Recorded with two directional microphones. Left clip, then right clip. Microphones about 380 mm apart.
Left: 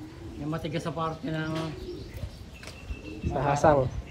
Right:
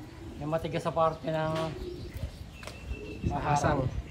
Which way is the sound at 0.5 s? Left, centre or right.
Centre.